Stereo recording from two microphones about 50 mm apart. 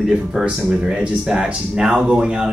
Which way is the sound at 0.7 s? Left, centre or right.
Centre.